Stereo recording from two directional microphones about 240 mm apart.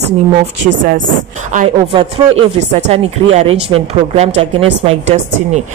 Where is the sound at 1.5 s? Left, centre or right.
Right.